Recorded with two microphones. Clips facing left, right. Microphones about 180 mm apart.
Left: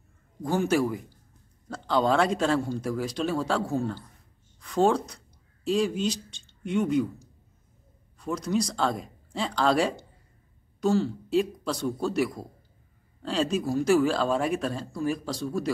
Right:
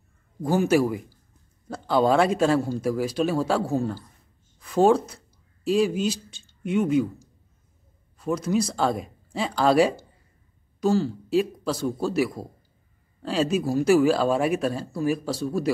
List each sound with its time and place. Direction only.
0.4 s speech: 5° right (ahead or behind)